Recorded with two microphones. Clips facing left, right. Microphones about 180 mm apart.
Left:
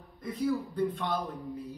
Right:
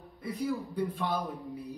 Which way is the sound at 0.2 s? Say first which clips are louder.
Left 2 dB; 10° right (ahead or behind).